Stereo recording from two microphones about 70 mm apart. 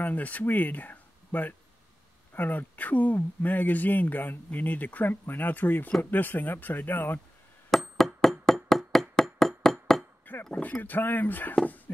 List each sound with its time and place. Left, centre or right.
0.0 s speech: left
8.0 s hammer: centre
9.6 s glass: centre
10.5 s speech: left